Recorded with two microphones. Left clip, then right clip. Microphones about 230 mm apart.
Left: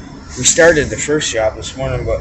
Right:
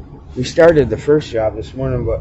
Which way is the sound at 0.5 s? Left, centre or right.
Right.